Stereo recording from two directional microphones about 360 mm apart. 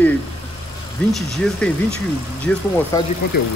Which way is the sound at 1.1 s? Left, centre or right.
Centre.